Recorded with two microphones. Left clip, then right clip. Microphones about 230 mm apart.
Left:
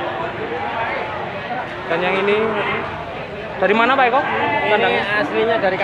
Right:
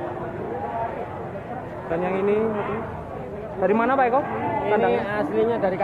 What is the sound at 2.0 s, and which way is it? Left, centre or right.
Speech, centre.